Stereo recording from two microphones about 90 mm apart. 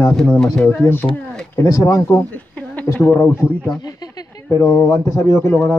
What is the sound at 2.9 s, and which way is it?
Speech, 25° left (ahead or behind).